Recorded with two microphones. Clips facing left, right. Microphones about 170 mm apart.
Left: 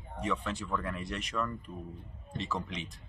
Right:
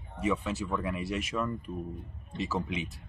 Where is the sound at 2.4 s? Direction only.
5° right (ahead or behind).